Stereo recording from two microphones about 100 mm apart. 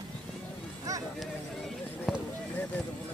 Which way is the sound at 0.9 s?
35° right (ahead or behind).